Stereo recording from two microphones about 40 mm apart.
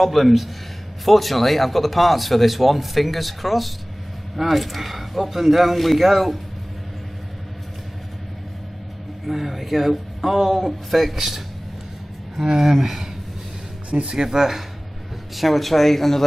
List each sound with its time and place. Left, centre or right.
0.0 s a man's voice: centre
9.2 s a man's voice: centre
13.8 s speech: right
14.1 s a man's voice: centre